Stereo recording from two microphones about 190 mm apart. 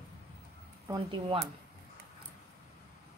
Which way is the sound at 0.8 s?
25° right (ahead or behind).